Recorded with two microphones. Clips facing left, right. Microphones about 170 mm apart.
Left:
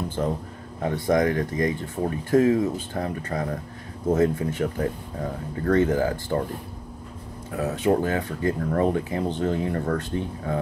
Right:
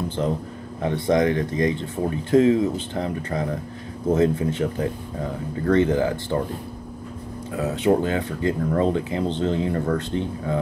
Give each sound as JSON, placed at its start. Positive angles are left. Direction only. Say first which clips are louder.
{"t": 0.8, "sound": "speech", "louder": "right 2 dB", "side_deg": -25}
{"t": 7.5, "sound": "speech", "louder": "right 2 dB", "side_deg": -25}